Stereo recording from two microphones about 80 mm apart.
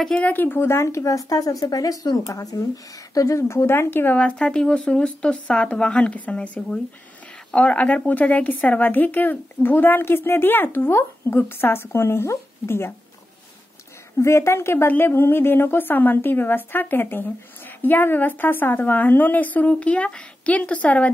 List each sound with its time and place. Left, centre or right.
0.1 s speech: left
4.2 s a woman's voice: centre; by 12.9 s left
14.1 s a woman's voice: left; by 21.1 s centre